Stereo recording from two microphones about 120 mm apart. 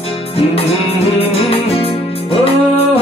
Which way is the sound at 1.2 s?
55° left (ahead or behind).